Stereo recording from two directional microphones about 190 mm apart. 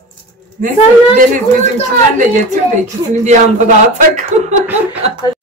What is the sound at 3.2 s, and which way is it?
A man's voice, 40° right (ahead or behind).